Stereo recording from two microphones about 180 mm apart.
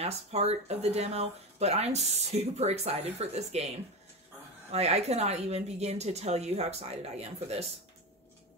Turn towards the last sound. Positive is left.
turn(degrees=-35)  # may be behind; listen again after turning